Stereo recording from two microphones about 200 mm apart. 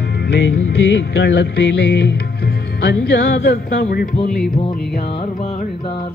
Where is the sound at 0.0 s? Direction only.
60° left (ahead or behind).